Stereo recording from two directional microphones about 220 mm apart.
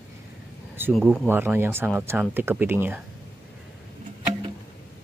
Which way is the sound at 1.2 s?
10° right (ahead or behind).